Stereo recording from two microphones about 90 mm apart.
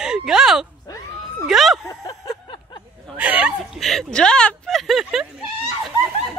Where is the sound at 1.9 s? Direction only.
40° left (ahead or behind).